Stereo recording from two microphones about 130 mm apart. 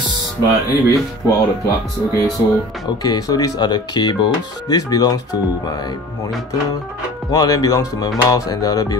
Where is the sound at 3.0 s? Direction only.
30° left (ahead or behind).